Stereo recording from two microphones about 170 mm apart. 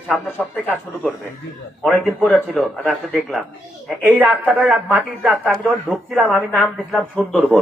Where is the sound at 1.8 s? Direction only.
5° left (ahead or behind).